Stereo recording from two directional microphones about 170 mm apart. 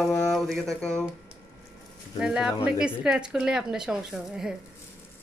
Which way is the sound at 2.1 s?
5° right (ahead or behind).